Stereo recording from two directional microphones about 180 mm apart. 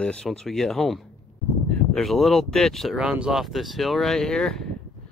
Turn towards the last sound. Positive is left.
turn(degrees=5)  # may be behind; listen again after turning